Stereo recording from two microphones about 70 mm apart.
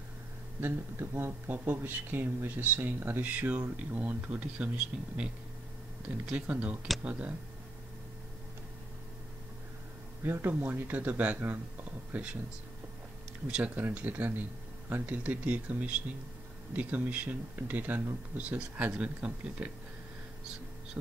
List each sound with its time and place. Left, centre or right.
0.6 s speech: right; by 5.3 s centre
6.3 s speech: centre
10.2 s speech: right
12.1 s speech: centre
13.7 s speech: right